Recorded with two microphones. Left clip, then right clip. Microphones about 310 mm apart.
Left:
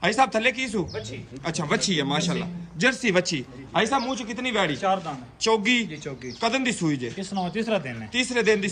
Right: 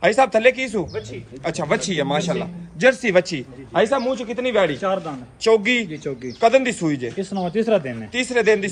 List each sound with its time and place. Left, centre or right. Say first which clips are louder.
0.0 s a man's voice: right 6 dB; centre
7.2 s speech: right 6 dB; left
8.1 s a man's voice: right 4 dB; centre